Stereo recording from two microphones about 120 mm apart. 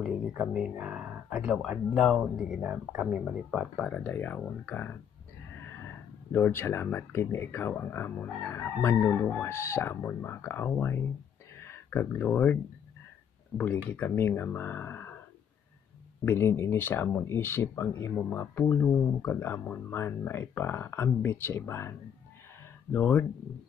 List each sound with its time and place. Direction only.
0.0 s speech: 5° right (ahead or behind)
2.6 s speech: 15° right (ahead or behind); by 4.1 s centre (ahead or behind)
4.1 s speech: 15° left (ahead or behind)
6.3 s speech: 20° left (ahead or behind)
9.5 s speech: 20° left (ahead or behind)
13.6 s speech: 15° left (ahead or behind)
16.3 s speech: 20° left (ahead or behind)